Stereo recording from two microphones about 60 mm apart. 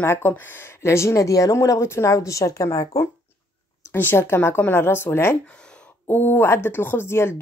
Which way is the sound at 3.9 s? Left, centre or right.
Left.